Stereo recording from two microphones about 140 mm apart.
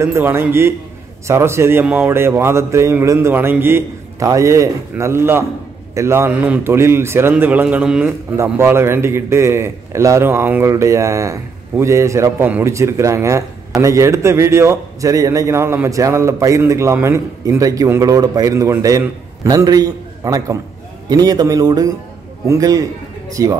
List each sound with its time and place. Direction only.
0.0 s a man's voice: 20° right (ahead or behind)